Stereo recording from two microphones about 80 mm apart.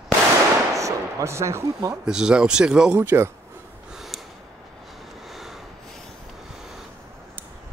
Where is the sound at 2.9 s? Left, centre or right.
Right.